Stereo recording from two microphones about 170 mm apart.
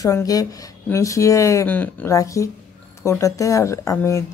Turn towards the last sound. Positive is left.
turn(degrees=20)  # may be behind; listen again after turning